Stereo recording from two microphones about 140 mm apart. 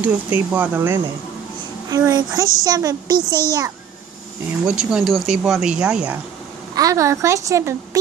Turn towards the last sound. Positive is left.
turn(degrees=-20)  # may be behind; listen again after turning